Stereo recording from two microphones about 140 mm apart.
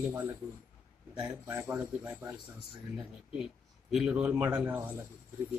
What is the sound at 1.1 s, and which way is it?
Speech, 5° right (ahead or behind).